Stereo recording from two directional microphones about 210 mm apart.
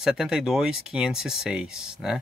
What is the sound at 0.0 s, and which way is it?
Speech, centre (ahead or behind).